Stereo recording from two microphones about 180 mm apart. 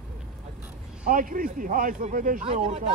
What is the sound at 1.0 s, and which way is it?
A man's voice, 50° right (ahead or behind).